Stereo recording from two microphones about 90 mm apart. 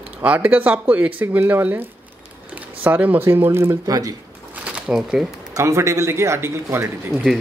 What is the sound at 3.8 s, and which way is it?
Speech, 45° right (ahead or behind).